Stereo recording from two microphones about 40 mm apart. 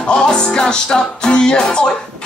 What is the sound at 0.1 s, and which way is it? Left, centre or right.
Music, centre.